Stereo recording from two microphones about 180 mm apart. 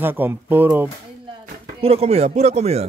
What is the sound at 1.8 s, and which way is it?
A man's voice, 35° right (ahead or behind).